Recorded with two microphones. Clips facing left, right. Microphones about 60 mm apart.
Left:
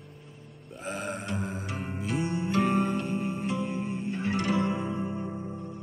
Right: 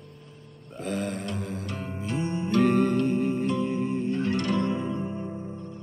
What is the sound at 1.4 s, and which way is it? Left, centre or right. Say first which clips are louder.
Music: right 1 dB; left.